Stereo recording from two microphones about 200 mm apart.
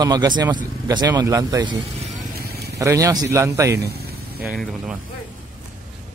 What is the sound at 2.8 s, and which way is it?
A man's voice, 15° right (ahead or behind).